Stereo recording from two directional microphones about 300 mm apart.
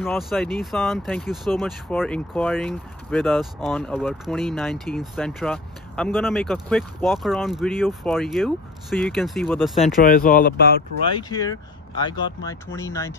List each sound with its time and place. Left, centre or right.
0.0 s speech: centre
10.0 s speech: left
11.1 s speech: centre